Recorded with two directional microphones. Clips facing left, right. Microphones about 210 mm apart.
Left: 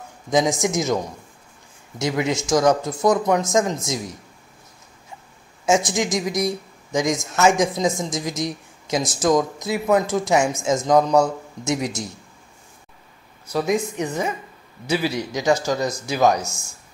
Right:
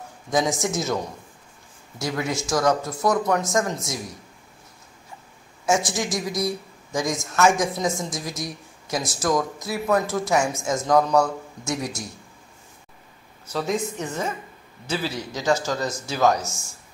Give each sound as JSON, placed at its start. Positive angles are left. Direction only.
{"t": 0.3, "sound": "speech", "side_deg": 20}
{"t": 2.0, "sound": "speech", "side_deg": 20}
{"t": 5.7, "sound": "speech", "side_deg": 20}
{"t": 13.5, "sound": "speech", "side_deg": 10}